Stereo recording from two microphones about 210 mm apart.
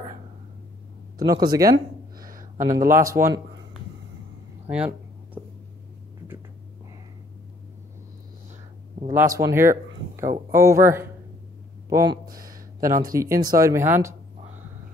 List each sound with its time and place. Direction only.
1.1 s speech: 15° right (ahead or behind)
2.1 s a sound: 40° right (ahead or behind)
2.6 s speech: 15° right (ahead or behind)
4.6 s a sound: 5° right (ahead or behind)
9.0 s speech: 15° right (ahead or behind)
12.8 s speech: 40° right (ahead or behind)
13.1 s speech: 15° right (ahead or behind)